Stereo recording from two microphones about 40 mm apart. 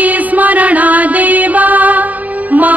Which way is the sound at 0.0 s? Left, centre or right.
Right.